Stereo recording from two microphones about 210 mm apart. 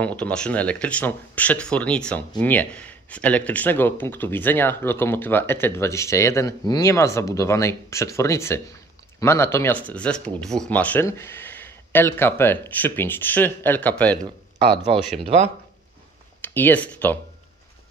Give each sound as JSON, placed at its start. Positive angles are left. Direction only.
{"t": 0.0, "sound": "speech", "side_deg": 5}
{"t": 14.9, "sound": "speech", "side_deg": -25}
{"t": 16.3, "sound": "speech", "side_deg": 10}